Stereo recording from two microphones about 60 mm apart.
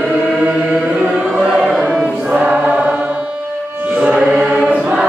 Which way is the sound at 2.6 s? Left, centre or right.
Right.